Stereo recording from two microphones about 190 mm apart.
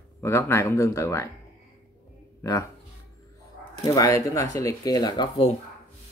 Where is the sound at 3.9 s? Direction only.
15° left (ahead or behind).